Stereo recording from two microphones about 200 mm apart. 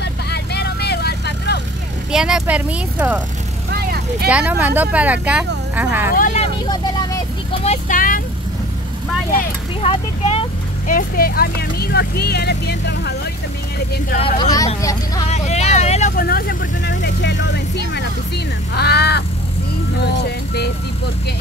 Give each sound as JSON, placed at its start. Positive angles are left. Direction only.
{"t": 0.0, "sound": "vehicle", "side_deg": 55}
{"t": 2.1, "sound": "speech", "side_deg": -5}
{"t": 4.3, "sound": "speech", "side_deg": -5}
{"t": 6.1, "sound": "speech", "side_deg": 35}
{"t": 7.6, "sound": "speech", "side_deg": 35}
{"t": 9.8, "sound": "speech", "side_deg": 30}
{"t": 10.9, "sound": "speech", "side_deg": 45}
{"t": 14.2, "sound": "speech", "side_deg": 20}
{"t": 15.2, "sound": "vehicle", "side_deg": 35}
{"t": 16.3, "sound": "speech", "side_deg": 50}